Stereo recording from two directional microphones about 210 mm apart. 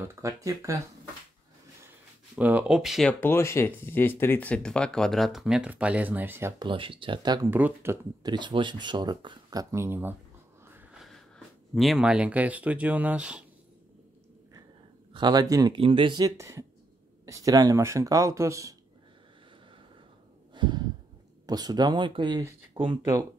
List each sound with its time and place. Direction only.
0.0 s speech: 15° right (ahead or behind)
2.3 s speech: 5° right (ahead or behind)
6.6 s speech: 25° right (ahead or behind)
10.7 s a sound: 5° right (ahead or behind)
15.1 s speech: 20° right (ahead or behind)
20.5 s a sound: 20° right (ahead or behind)
21.5 s speech: 20° right (ahead or behind)